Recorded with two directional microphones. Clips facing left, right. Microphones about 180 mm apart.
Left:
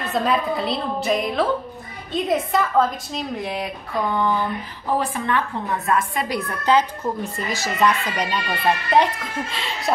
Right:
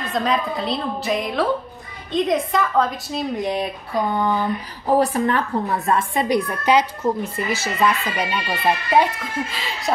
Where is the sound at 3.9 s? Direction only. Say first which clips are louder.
Right 1 dB; 35° right (ahead or behind).